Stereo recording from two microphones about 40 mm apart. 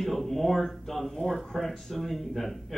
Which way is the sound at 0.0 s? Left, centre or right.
Centre.